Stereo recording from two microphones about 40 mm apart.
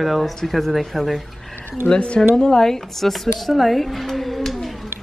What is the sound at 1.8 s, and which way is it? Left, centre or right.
Speech, left.